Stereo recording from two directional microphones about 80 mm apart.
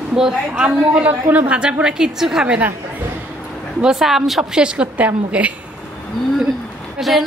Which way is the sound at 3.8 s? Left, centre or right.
Centre.